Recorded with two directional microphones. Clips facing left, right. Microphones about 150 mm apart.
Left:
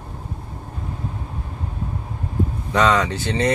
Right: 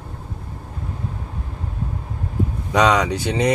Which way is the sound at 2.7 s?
15° right (ahead or behind).